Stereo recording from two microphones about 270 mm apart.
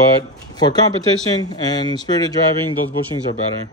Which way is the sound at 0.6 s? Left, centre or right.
Centre.